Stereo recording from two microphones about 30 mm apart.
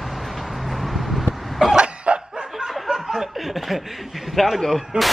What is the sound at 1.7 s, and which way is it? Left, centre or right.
Cough, right.